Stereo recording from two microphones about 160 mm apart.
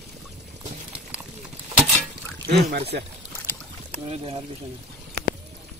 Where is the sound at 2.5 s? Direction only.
90° right.